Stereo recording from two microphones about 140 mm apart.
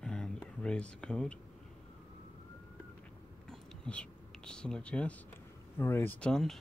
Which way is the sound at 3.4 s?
5° left (ahead or behind).